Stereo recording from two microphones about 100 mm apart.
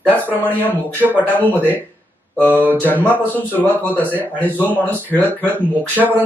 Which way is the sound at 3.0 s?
20° left (ahead or behind).